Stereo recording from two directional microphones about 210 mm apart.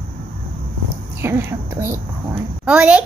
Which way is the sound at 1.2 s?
10° right (ahead or behind).